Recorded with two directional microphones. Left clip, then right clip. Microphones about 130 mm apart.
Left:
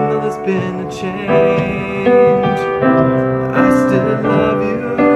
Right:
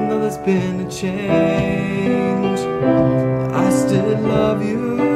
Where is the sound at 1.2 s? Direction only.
30° right (ahead or behind).